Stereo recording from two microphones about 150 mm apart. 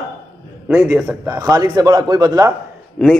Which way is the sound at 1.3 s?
25° right (ahead or behind).